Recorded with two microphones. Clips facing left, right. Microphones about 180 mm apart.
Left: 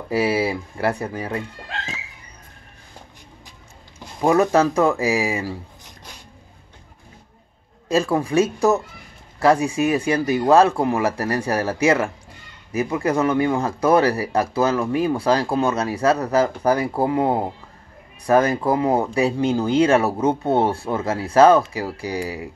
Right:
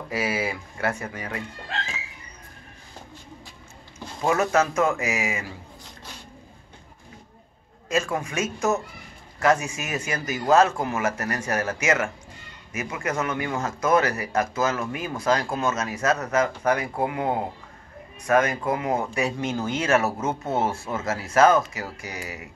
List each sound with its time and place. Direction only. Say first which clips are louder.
0.1 s speech: left 7 dB; 30° left (ahead or behind)
4.2 s speech: left 5 dB; 35° left (ahead or behind)
7.9 s speech: left 7 dB; 35° left (ahead or behind)